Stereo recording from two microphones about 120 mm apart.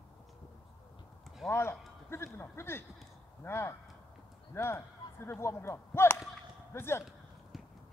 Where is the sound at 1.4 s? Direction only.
20° left (ahead or behind).